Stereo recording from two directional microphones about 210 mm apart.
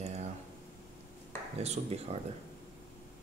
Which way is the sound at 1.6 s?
30° right (ahead or behind).